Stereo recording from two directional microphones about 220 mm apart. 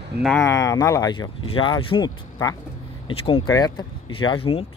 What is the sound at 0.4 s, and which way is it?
Speech, 15° left (ahead or behind).